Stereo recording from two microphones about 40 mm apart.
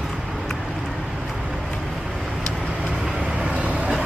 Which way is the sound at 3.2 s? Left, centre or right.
Right.